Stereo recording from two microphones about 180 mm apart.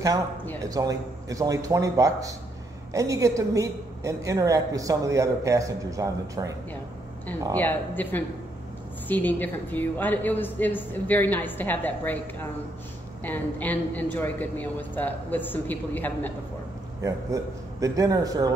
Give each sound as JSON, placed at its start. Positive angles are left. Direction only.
{"t": 0.7, "sound": "a man's voice", "side_deg": -20}
{"t": 7.5, "sound": "a woman's voice", "side_deg": 10}
{"t": 13.2, "sound": "a woman's voice", "side_deg": 10}
{"t": 17.0, "sound": "a man's voice", "side_deg": -20}